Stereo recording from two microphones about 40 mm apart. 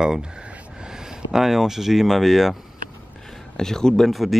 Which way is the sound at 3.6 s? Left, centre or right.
Centre.